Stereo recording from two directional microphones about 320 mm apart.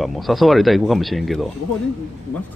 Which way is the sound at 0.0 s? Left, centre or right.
Centre.